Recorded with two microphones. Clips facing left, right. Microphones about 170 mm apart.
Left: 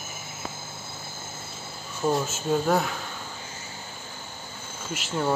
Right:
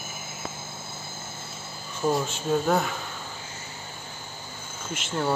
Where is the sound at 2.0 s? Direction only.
Centre (ahead or behind).